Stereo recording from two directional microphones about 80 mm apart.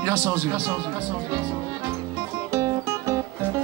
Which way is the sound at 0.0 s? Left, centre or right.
Right.